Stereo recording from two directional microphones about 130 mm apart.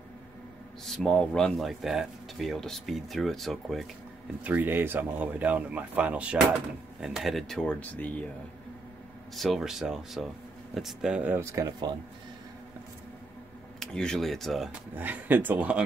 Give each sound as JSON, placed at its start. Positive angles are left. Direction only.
{"t": 0.8, "sound": "speech", "side_deg": 5}
{"t": 4.4, "sound": "speech", "side_deg": -10}
{"t": 9.3, "sound": "speech", "side_deg": 0}
{"t": 11.3, "sound": "speech", "side_deg": -25}
{"t": 13.7, "sound": "speech", "side_deg": 5}
{"t": 15.0, "sound": "speech", "side_deg": -15}